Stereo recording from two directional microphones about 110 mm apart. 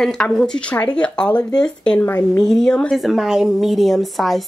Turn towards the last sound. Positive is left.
turn(degrees=0)  # may be behind; listen again after turning